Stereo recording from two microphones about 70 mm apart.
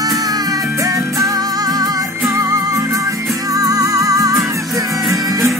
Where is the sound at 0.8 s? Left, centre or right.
Right.